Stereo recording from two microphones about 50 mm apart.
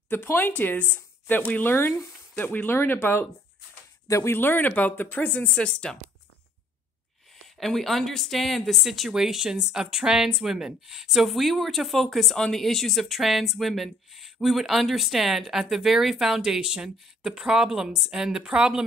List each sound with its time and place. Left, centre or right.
0.1 s speech: left
1.6 s speech: left
4.3 s speech: left
5.5 s speech: centre
7.4 s speech: centre